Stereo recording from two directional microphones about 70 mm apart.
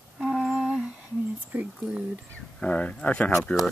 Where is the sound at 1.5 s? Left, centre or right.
Right.